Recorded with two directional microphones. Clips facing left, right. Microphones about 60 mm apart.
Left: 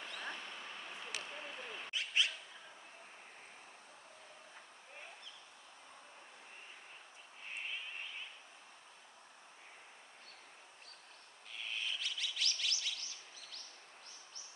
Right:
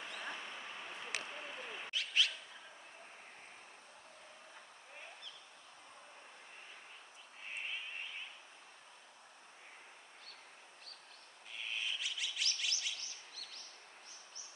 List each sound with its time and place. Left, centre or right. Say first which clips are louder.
0.0 s a sound: even; centre
1.9 s bird: even; left
11.6 s chirp: even; centre; by 13.6 s right